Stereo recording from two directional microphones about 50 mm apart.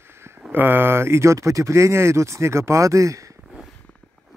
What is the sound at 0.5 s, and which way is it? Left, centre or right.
Speech, right.